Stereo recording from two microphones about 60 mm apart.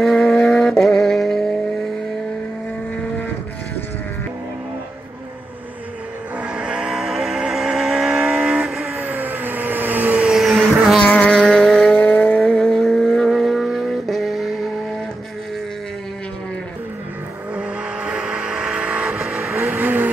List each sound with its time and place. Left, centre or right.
0.0 s music: centre
6.4 s vehicle: centre
6.9 s vehicle: centre
9.0 s vehicle: right
10.3 s vehicle: centre
11.1 s vehicle: left
11.3 s vehicle: centre
11.9 s vehicle: left
12.4 s vehicle: centre
17.6 s vehicle: centre
19.1 s vehicle: centre
19.5 s vehicle: right